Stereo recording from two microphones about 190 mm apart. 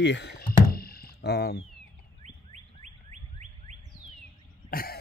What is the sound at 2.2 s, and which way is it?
Bird, 40° right (ahead or behind).